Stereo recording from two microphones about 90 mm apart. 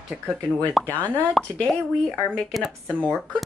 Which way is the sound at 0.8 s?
20° left (ahead or behind).